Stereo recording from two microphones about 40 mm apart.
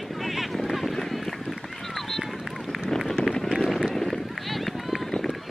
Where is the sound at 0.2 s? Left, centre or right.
Centre.